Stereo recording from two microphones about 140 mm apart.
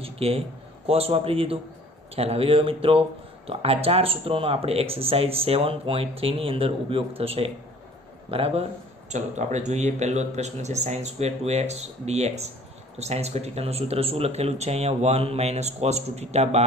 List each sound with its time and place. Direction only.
0.0 s a sound: 45° right (ahead or behind)
0.8 s speech: 45° right (ahead or behind)
9.1 s speech: 55° right (ahead or behind)